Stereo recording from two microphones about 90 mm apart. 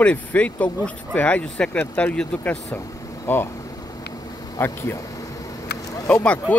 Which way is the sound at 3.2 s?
25° left (ahead or behind).